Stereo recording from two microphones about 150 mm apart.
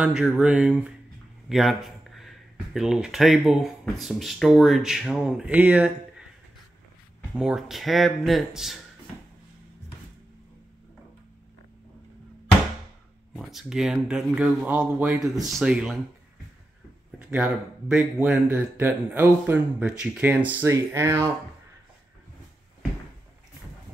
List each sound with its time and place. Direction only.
0.0 s speech: 5° right (ahead or behind)
7.3 s speech: 5° right (ahead or behind)
13.4 s speech: centre (ahead or behind)
17.9 s speech: 10° right (ahead or behind)